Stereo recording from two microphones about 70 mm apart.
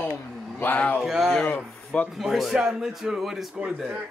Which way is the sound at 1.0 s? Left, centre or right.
Centre.